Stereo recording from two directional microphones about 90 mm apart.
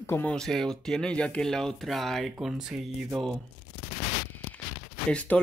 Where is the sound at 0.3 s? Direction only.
5° left (ahead or behind).